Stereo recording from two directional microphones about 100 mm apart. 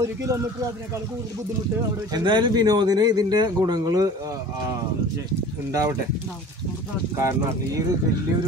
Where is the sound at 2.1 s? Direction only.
45° right (ahead or behind).